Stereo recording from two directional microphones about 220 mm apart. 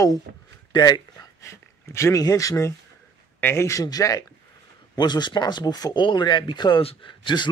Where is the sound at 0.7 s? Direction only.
20° left (ahead or behind).